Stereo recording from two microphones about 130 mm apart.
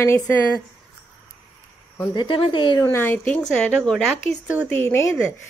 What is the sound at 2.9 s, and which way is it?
A woman's voice, 15° left (ahead or behind).